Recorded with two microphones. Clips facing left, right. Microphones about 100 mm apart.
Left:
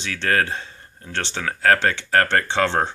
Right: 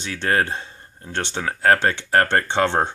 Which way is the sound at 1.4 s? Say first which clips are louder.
Right 1 dB; 25° right (ahead or behind).